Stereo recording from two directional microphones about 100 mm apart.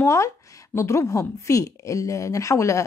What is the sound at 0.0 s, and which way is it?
Speech, 30° left (ahead or behind).